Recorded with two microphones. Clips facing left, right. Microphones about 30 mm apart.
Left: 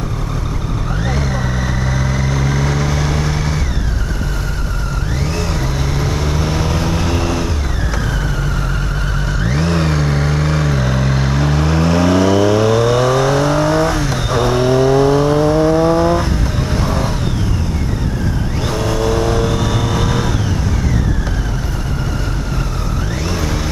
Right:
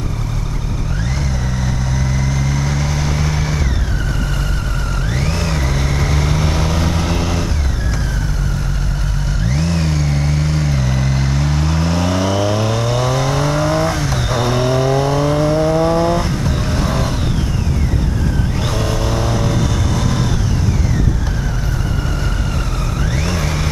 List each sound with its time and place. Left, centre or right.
2.0 s vehicle: centre
5.5 s vehicle: centre
9.5 s vehicle: left
10.7 s vehicle: centre
18.7 s vehicle: centre
23.2 s vehicle: centre